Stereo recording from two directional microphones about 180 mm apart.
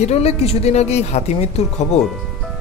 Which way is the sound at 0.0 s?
35° left (ahead or behind).